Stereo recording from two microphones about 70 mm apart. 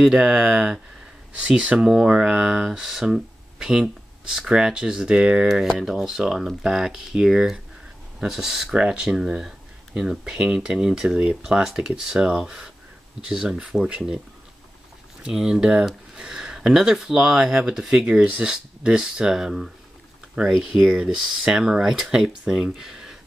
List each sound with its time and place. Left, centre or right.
0.0 s speech: centre
1.9 s speech: centre
15.2 s speech: centre
22.8 s a sound: centre